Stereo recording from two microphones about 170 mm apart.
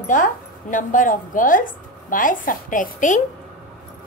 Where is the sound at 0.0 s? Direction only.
50° left (ahead or behind).